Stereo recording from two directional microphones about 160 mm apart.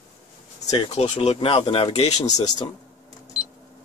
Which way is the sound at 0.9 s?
40° left (ahead or behind).